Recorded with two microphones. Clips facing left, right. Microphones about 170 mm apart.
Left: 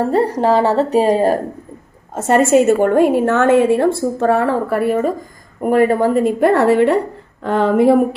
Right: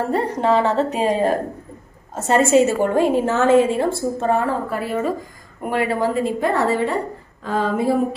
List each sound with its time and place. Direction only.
0.1 s a woman's voice: 35° left (ahead or behind)
2.1 s a woman's voice: 50° left (ahead or behind)
5.6 s a woman's voice: 45° left (ahead or behind); by 8.0 s 65° left (ahead or behind)